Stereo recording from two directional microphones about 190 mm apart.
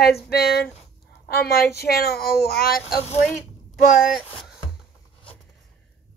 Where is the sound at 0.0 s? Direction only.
55° left (ahead or behind).